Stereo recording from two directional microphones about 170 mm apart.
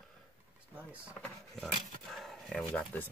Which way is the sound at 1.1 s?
5° left (ahead or behind).